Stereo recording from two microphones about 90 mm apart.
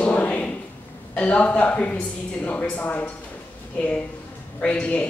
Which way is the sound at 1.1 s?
15° left (ahead or behind).